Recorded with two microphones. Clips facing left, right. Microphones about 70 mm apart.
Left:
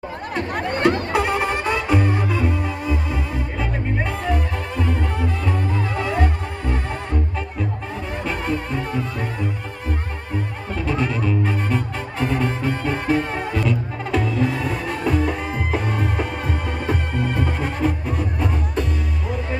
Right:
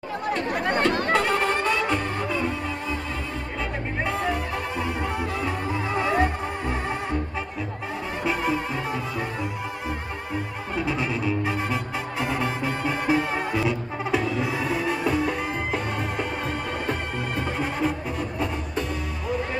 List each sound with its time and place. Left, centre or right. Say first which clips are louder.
1.1 s music: left 2 dB; centre
5.9 s music: right 3 dB; right
8.3 s music: even; centre
10.9 s music: left 5 dB; centre